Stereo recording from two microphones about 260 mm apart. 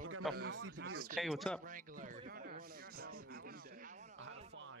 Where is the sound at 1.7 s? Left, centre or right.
Right.